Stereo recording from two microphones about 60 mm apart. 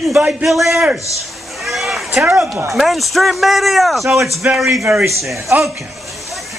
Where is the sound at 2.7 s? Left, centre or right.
Centre.